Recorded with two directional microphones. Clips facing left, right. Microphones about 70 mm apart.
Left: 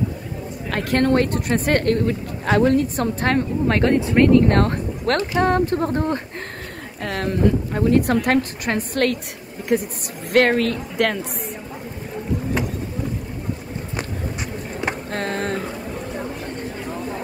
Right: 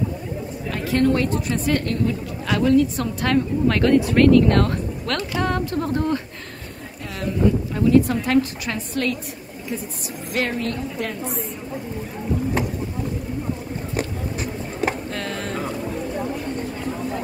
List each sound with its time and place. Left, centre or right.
0.7 s speech: left
7.0 s speech: left
7.7 s a woman's voice: left
10.6 s speech: left
15.0 s a sound: left